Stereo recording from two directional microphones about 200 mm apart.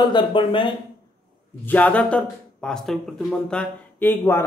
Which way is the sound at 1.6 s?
10° left (ahead or behind).